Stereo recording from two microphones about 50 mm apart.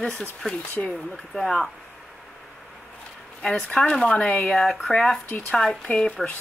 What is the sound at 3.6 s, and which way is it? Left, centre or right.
Speech, centre.